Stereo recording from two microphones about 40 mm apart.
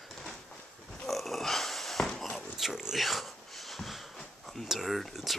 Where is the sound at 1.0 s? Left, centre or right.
Centre.